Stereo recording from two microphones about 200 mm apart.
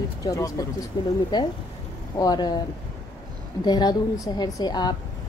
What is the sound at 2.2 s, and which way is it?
Speech, 20° left (ahead or behind).